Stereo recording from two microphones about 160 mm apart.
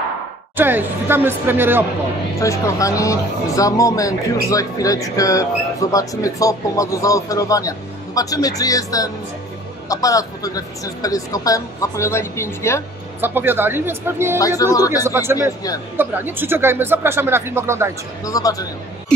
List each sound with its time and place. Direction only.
0.6 s speech: 10° right (ahead or behind)
2.4 s speech: 20° left (ahead or behind)
13.2 s speech: 10° right (ahead or behind)
14.6 s speech: 20° left (ahead or behind)
15.0 s speech: 15° right (ahead or behind)
18.2 s speech: 20° left (ahead or behind)